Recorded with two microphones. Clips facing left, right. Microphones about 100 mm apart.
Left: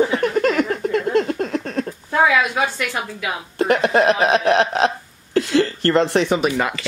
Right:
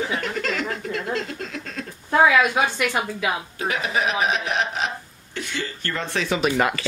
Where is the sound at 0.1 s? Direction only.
50° left (ahead or behind).